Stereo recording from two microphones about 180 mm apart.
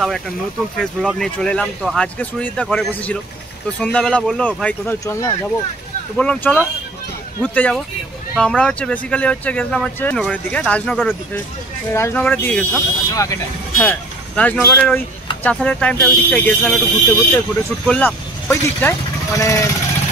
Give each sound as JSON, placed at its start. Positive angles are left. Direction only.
{"t": 0.7, "sound": "speech", "side_deg": 0}
{"t": 13.1, "sound": "speech", "side_deg": 20}
{"t": 13.7, "sound": "speech", "side_deg": 10}